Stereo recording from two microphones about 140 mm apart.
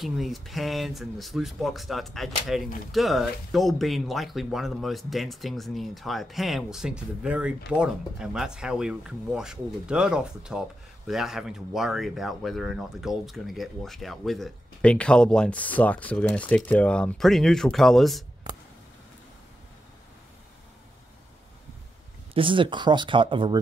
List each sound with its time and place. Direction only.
0.0 s speech: centre (ahead or behind)
22.3 s speech: 40° right (ahead or behind)